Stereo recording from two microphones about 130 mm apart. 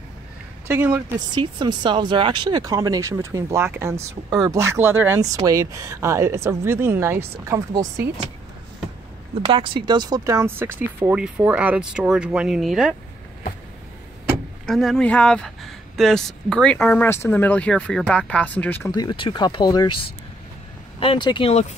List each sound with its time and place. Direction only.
0.7 s speech: 15° right (ahead or behind)
1.3 s speech: 35° right (ahead or behind); by 5.2 s 15° right (ahead or behind)
5.2 s speech: 25° right (ahead or behind)
9.5 s speech: 40° right (ahead or behind); by 12.9 s 5° right (ahead or behind)
14.7 s speech: centre (ahead or behind)
16.7 s speech: 15° left (ahead or behind)
18.9 s speech: 35° left (ahead or behind)
21.5 s speech: 60° left (ahead or behind)